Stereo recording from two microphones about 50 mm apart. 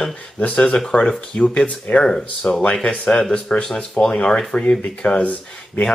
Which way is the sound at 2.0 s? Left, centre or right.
Centre.